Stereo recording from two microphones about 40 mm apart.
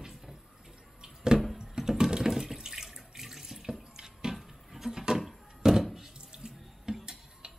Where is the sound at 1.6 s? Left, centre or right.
Centre.